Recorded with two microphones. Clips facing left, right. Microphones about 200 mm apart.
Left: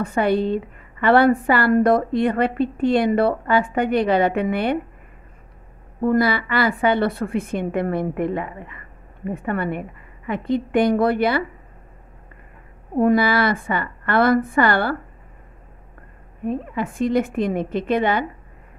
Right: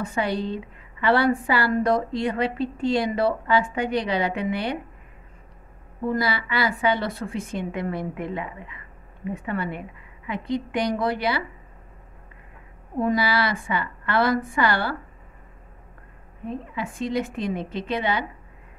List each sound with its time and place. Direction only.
0.0 s a woman's voice: 55° left (ahead or behind)
6.0 s a woman's voice: 55° left (ahead or behind)
13.0 s a woman's voice: 55° left (ahead or behind)
16.4 s a woman's voice: 55° left (ahead or behind)